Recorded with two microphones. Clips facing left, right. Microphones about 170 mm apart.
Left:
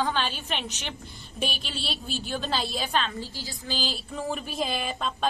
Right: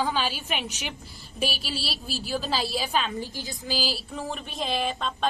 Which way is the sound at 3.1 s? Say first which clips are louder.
Right 3 dB; 20° right (ahead or behind).